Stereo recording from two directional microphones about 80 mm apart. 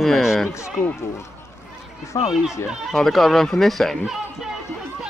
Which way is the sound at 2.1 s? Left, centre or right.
Left.